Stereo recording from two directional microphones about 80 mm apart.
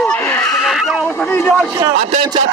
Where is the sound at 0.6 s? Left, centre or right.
Centre.